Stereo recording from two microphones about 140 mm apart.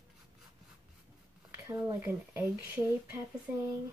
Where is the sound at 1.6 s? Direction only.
25° right (ahead or behind).